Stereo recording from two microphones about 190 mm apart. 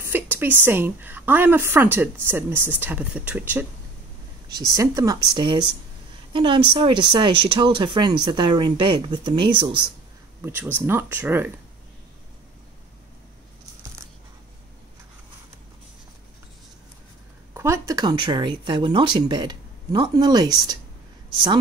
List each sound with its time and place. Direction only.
0.0 s a woman's voice: 10° right (ahead or behind)
4.7 s speech: 20° right (ahead or behind)
10.4 s a woman's voice: 10° right (ahead or behind)
17.6 s speech: 15° right (ahead or behind)